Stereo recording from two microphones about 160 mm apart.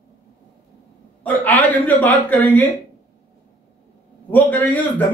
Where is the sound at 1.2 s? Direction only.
10° left (ahead or behind).